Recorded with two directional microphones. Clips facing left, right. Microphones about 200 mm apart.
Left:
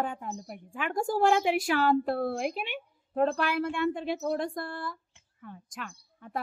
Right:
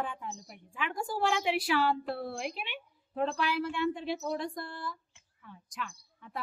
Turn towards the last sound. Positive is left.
turn(degrees=50)  # may be behind; listen again after turning